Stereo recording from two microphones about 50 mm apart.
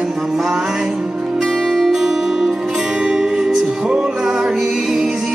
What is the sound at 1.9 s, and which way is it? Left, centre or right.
Music, centre.